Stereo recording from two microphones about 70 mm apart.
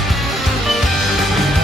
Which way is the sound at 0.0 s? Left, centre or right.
Centre.